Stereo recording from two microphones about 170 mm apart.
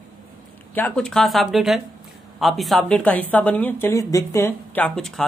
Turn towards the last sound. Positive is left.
turn(degrees=5)  # may be behind; listen again after turning